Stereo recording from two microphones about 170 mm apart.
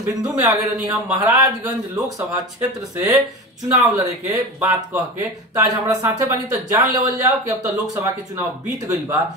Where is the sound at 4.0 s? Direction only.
20° right (ahead or behind).